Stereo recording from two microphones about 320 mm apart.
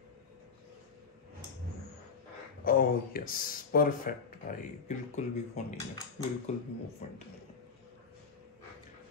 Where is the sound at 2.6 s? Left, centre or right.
Left.